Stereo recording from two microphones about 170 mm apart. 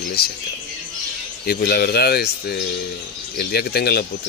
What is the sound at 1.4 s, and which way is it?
Speech, 65° left (ahead or behind).